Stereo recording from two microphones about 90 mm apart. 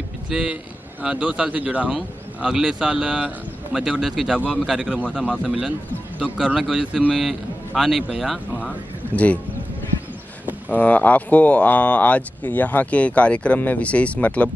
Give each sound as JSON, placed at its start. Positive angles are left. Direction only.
{"t": 0.3, "sound": "a man's voice", "side_deg": -5}
{"t": 1.9, "sound": "a man's voice", "side_deg": -5}
{"t": 8.5, "sound": "a sound", "side_deg": 15}
{"t": 10.7, "sound": "speech", "side_deg": 15}